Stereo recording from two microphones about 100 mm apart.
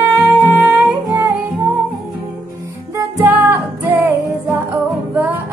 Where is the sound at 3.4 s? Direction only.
20° right (ahead or behind).